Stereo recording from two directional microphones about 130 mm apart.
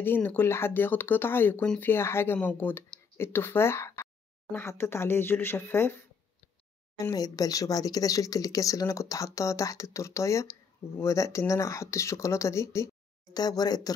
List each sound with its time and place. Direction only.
0.0 s speech: 15° left (ahead or behind)